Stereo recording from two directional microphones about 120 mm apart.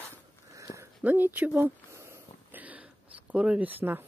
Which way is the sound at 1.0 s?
15° right (ahead or behind).